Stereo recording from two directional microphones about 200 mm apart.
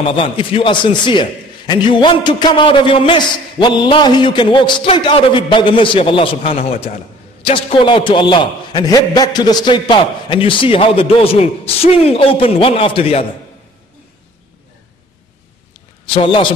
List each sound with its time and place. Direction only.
0.0 s a man's voice: 25° left (ahead or behind)
16.1 s a man's voice: 25° left (ahead or behind)